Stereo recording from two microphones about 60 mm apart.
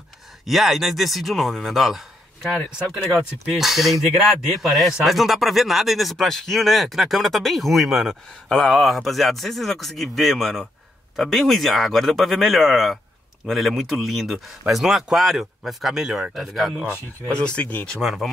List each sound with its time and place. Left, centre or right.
0.5 s speech: centre
17.3 s speech: centre
18.0 s speech: centre